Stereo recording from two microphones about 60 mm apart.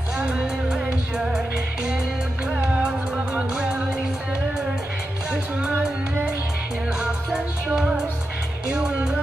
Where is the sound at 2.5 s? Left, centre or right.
Centre.